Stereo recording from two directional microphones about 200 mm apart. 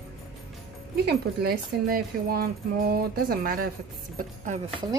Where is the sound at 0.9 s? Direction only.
50° right (ahead or behind).